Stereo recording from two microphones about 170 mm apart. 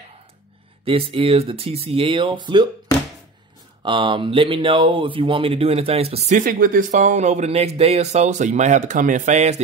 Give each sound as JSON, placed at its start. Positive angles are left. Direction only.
{"t": 0.8, "sound": "speech", "side_deg": -35}
{"t": 3.8, "sound": "speech", "side_deg": -30}
{"t": 6.4, "sound": "speech", "side_deg": -55}